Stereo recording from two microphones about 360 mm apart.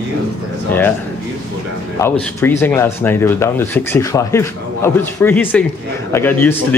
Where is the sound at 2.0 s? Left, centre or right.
Centre.